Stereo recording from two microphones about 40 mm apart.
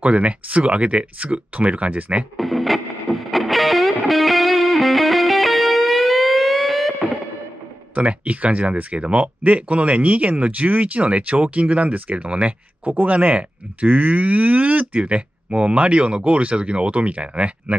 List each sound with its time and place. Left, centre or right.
0.0 s speech: right
2.3 s music: centre
7.9 s speech: right